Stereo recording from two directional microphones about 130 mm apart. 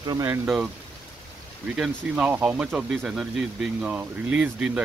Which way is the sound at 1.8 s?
10° right (ahead or behind).